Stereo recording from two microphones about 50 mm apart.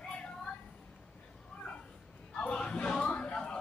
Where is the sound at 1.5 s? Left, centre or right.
Centre.